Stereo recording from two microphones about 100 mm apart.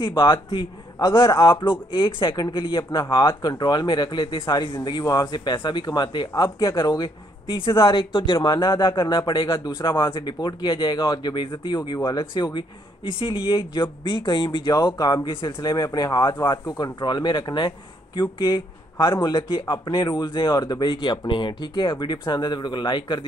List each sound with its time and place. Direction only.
0.0 s speech: 55° left (ahead or behind)
0.9 s a man's voice: 30° left (ahead or behind)
1.6 s speech: 55° left (ahead or behind)
12.0 s speech: 35° left (ahead or behind)
12.4 s speech: 50° left (ahead or behind)
14.9 s speech: 40° left (ahead or behind)
15.2 s speech: 55° left (ahead or behind)
15.7 s speech: 40° left (ahead or behind)